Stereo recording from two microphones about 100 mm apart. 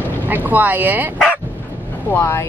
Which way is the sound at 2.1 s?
25° left (ahead or behind).